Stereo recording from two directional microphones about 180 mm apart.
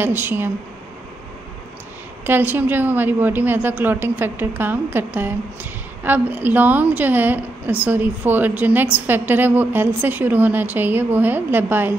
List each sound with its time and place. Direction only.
0.0 s a woman's voice: 10° right (ahead or behind)
2.2 s a woman's voice: 10° right (ahead or behind)